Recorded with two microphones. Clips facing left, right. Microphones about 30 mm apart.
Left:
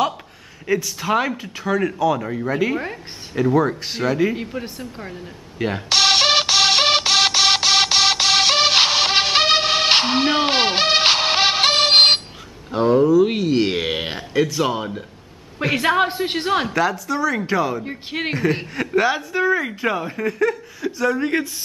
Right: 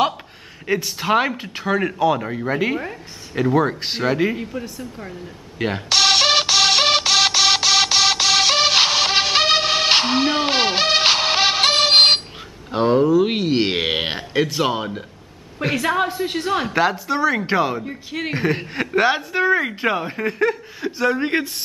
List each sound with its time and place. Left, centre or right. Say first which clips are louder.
0.7 s speech: right 1 dB; right
4.6 s speech: even; left
5.9 s music: even; centre
12.7 s a sound: left 1 dB; right
13.0 s speech: left 1 dB; centre
15.7 s a woman's voice: left 2 dB; left
16.7 s speech: right 1 dB; right
17.8 s a woman's voice: left 1 dB; left
18.9 s speech: right 1 dB; right